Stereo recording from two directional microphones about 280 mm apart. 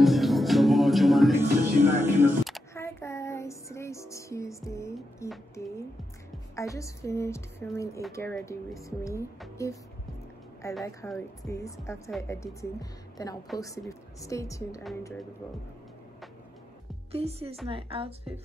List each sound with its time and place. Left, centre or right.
0.0 s music: centre
6.5 s speech: centre
13.6 s speech: centre
17.1 s a woman's voice: right